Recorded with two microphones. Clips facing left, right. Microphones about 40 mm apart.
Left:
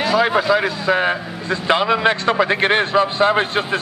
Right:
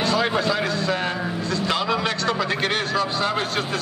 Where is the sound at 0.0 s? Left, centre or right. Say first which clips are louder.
Left 5 dB; centre.